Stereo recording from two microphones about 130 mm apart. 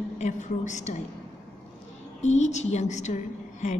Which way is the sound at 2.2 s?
60° left (ahead or behind).